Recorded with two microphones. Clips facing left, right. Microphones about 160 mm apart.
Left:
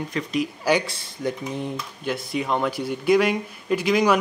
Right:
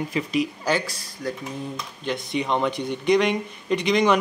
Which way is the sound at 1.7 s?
5° left (ahead or behind).